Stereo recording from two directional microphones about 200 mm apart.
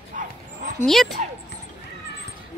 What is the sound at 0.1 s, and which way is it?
Dog, 40° right (ahead or behind).